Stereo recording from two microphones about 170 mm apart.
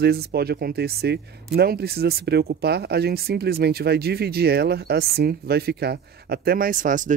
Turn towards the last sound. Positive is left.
turn(degrees=-50)  # may be behind; listen again after turning